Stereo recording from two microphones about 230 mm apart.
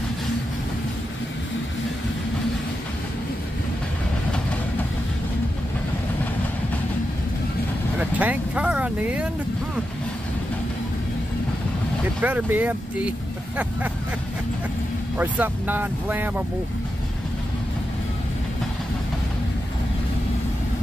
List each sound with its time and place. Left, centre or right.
8.0 s vehicle: centre
12.2 s speech: centre
15.1 s speech: centre